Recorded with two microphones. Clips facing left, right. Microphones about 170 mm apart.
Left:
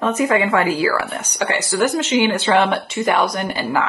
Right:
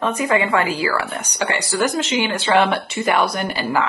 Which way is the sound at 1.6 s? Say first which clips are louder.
Left 3 dB; 10° right (ahead or behind).